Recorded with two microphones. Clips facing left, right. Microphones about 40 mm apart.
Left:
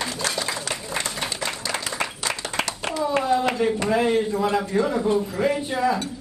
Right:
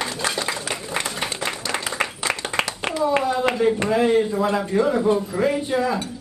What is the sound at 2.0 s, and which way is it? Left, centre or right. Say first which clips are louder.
Applause: right 3 dB; right.